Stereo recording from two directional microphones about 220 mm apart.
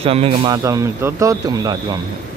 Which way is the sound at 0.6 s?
15° right (ahead or behind).